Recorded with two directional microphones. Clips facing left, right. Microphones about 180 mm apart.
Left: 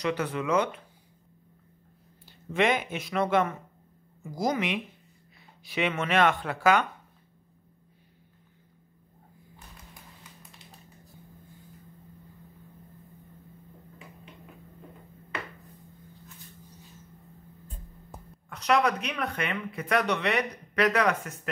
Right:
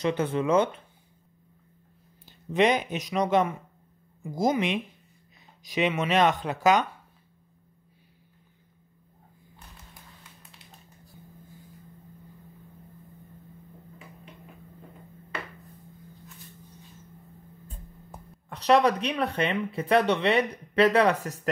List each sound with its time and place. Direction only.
0.0 s speech: 25° right (ahead or behind)
2.2 s speech: 20° right (ahead or behind)
18.5 s speech: 30° right (ahead or behind)